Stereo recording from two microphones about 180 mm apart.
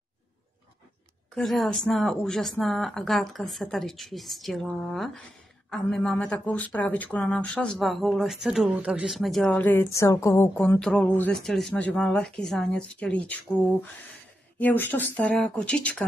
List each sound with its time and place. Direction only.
1.3 s speech: centre (ahead or behind)
14.6 s speech: 10° left (ahead or behind)